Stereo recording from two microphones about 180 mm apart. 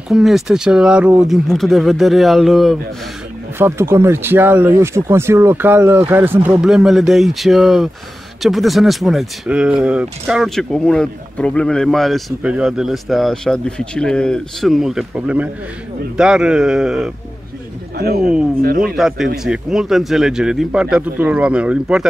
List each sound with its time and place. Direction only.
0.1 s speech: centre (ahead or behind)
3.5 s speech: 15° right (ahead or behind)
17.9 s speech: 60° right (ahead or behind)
18.9 s speech: centre (ahead or behind)